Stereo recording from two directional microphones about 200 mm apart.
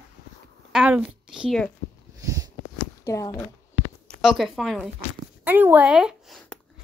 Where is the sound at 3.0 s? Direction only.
15° left (ahead or behind).